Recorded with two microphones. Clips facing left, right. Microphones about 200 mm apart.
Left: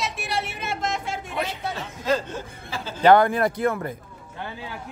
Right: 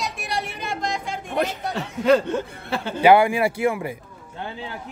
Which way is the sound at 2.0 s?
65° right (ahead or behind).